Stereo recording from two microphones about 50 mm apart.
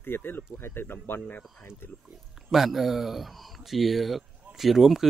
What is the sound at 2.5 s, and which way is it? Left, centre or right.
Speech, centre.